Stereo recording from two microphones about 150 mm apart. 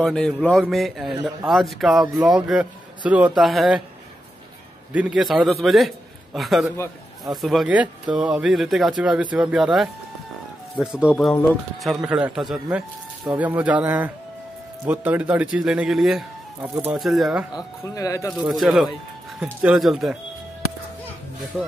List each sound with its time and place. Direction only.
0.0 s a man's voice: 5° left (ahead or behind)
4.9 s speech: 5° right (ahead or behind)
17.9 s speech: 20° left (ahead or behind)
18.4 s speech: 5° right (ahead or behind)
21.5 s speech: 5° right (ahead or behind)